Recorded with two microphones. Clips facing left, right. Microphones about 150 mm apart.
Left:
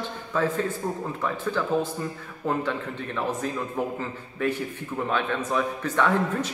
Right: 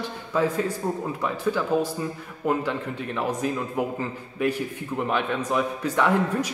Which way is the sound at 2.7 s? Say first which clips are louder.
Right 1 dB; 10° right (ahead or behind).